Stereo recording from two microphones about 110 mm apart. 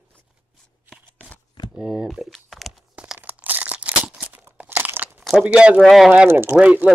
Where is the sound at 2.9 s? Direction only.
10° right (ahead or behind).